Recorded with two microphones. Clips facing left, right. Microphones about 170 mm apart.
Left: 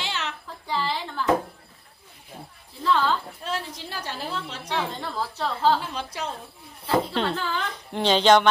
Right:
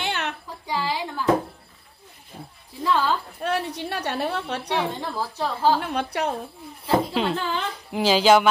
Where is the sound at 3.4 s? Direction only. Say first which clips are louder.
Right 6 dB; 65° right (ahead or behind).